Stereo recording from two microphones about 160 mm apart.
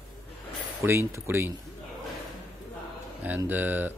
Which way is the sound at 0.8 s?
15° right (ahead or behind).